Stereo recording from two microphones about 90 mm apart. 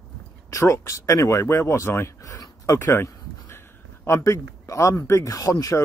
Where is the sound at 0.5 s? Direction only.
35° left (ahead or behind).